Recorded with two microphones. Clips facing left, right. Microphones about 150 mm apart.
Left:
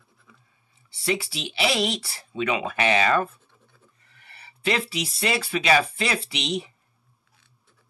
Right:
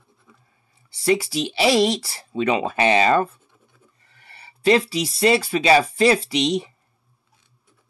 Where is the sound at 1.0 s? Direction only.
40° right (ahead or behind).